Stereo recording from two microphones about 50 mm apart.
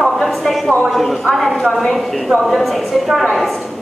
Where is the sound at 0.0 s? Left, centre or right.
Centre.